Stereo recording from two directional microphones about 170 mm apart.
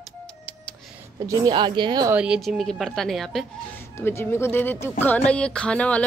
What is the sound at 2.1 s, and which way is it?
Speech, 5° right (ahead or behind).